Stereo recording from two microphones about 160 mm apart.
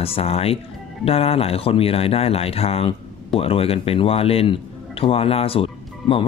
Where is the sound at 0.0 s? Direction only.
35° left (ahead or behind).